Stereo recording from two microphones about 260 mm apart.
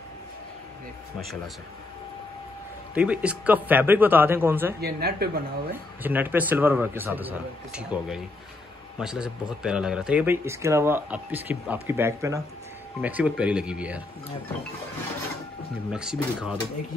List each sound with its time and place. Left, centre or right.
2.9 s speech: centre
4.7 s speech: right
6.0 s speech: centre
15.9 s speech: centre